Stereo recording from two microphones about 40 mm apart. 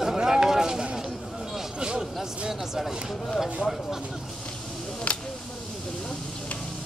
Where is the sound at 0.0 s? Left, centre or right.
Centre.